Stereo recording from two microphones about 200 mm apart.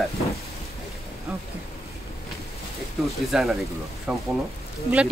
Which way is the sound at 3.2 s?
Centre (ahead or behind).